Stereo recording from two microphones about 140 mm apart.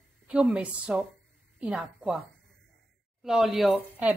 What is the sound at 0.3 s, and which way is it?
A woman's voice, 5° right (ahead or behind).